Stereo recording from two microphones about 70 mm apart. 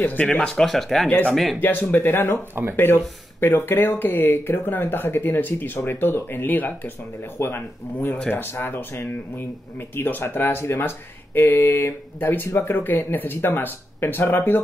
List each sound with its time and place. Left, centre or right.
0.0 s speech: left
0.6 s speech: centre
1.6 s speech: left